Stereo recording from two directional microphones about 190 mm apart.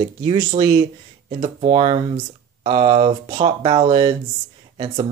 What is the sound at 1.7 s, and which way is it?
Speech, 30° right (ahead or behind).